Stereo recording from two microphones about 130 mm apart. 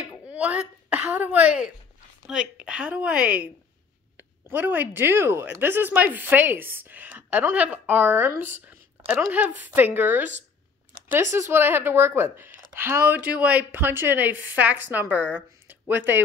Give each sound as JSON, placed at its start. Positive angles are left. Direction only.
{"t": 0.3, "sound": "speech", "side_deg": -10}